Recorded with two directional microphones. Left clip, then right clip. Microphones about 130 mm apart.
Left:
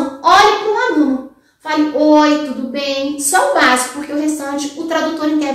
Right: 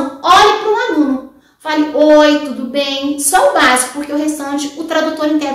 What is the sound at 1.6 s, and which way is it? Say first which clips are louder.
A woman's voice: right 3 dB; 25° right (ahead or behind).